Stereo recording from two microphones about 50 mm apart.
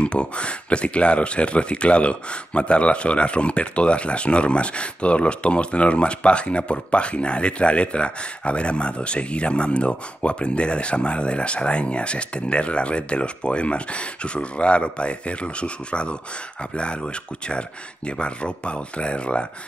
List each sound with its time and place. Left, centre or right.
0.0 s speech: left